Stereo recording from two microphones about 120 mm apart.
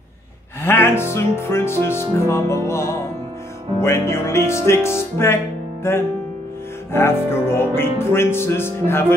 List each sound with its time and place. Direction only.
0.6 s music: 20° left (ahead or behind)